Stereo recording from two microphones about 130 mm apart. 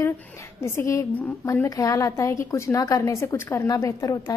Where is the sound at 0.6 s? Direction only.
20° left (ahead or behind).